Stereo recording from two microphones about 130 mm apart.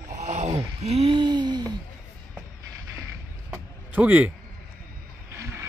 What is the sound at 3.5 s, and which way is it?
Music, 10° right (ahead or behind).